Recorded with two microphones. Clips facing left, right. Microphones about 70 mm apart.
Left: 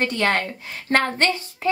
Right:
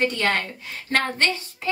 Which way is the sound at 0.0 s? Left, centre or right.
Left.